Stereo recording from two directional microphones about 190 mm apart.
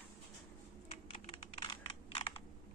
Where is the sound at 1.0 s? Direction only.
30° left (ahead or behind).